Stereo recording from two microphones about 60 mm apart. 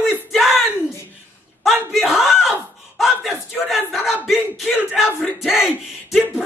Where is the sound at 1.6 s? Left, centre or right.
Centre.